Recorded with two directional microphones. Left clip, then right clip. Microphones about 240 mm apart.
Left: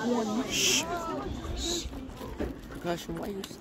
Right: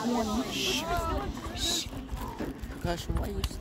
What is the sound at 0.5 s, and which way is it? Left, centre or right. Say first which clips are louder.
Speech: left 4 dB; left.